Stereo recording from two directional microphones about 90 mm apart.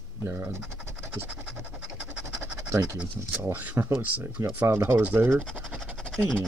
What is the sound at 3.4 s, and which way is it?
Speech, 20° right (ahead or behind).